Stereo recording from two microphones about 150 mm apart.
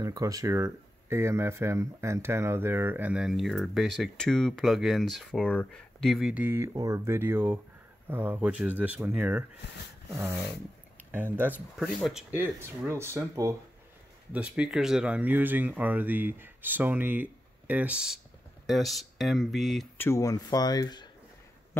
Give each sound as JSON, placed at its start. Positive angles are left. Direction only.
{"t": 0.0, "sound": "speech", "side_deg": -20}
{"t": 6.3, "sound": "speech", "side_deg": -15}
{"t": 11.1, "sound": "speech", "side_deg": -15}
{"t": 12.1, "sound": "speech", "side_deg": -5}
{"t": 12.4, "sound": "speech", "side_deg": -15}
{"t": 14.3, "sound": "speech", "side_deg": -5}
{"t": 20.0, "sound": "speech", "side_deg": 20}